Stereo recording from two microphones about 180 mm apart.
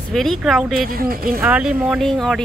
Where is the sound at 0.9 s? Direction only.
55° right (ahead or behind).